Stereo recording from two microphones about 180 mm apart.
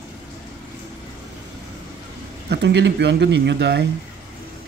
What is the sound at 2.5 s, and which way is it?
Speech, 70° right (ahead or behind).